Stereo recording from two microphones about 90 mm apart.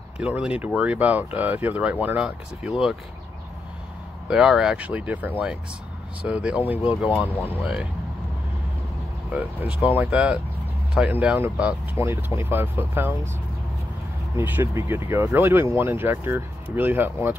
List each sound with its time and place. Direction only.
0.2 s speech: 15° right (ahead or behind)
4.3 s speech: 5° right (ahead or behind)
9.3 s speech: 15° right (ahead or behind)
14.3 s speech: 25° right (ahead or behind)